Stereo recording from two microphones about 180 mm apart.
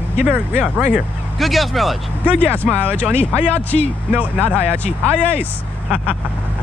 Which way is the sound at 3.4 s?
10° left (ahead or behind).